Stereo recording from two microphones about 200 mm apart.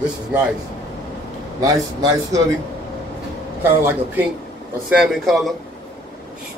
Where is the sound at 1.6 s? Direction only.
15° right (ahead or behind).